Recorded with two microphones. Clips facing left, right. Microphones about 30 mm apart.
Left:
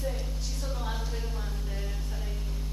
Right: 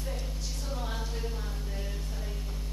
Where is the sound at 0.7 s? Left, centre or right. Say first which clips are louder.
Left 1 dB; centre.